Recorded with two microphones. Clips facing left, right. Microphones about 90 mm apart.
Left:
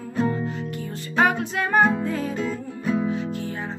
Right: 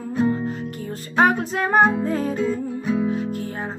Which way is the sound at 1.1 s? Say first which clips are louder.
Right 3 dB; 40° right (ahead or behind).